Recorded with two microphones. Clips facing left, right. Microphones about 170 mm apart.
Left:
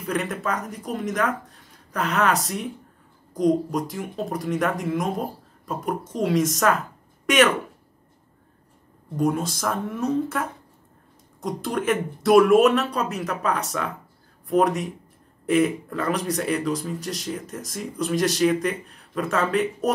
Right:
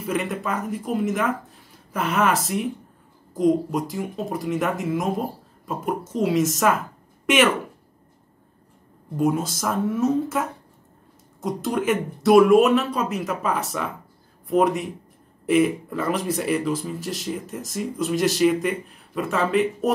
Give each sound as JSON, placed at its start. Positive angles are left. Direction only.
{"t": 0.0, "sound": "speech", "side_deg": 0}
{"t": 9.1, "sound": "speech", "side_deg": 0}